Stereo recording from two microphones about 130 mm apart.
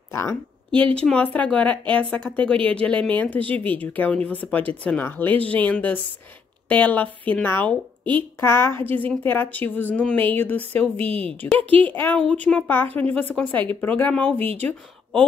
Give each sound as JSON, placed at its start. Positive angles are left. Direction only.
{"t": 0.1, "sound": "speech", "side_deg": 20}
{"t": 0.9, "sound": "a woman's voice", "side_deg": 10}